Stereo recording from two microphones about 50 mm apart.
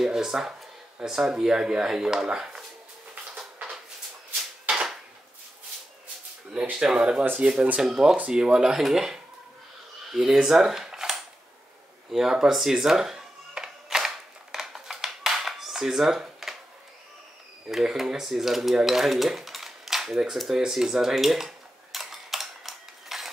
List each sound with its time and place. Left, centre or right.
0.0 s speech: centre
6.6 s speech: right
7.8 s speech: centre
12.1 s music: centre
17.6 s speech: centre
20.3 s cutlery: centre